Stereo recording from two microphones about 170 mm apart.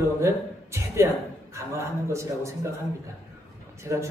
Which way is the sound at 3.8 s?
15° right (ahead or behind).